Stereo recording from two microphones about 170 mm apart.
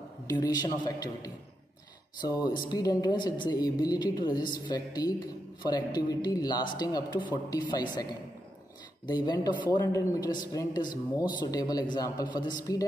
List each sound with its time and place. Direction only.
0.3 s speech: 25° left (ahead or behind)